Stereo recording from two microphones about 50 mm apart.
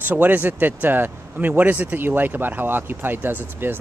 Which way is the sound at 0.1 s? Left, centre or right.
Right.